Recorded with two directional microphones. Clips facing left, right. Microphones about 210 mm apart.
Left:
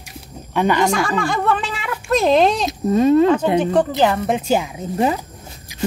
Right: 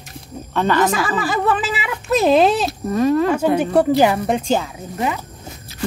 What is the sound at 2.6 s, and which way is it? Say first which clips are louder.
Speech: left 2 dB; 20° left (ahead or behind).